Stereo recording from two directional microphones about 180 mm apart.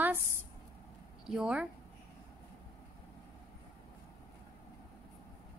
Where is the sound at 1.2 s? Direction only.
5° right (ahead or behind).